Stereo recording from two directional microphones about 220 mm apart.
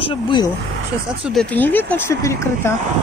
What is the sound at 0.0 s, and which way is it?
Speech, 20° left (ahead or behind).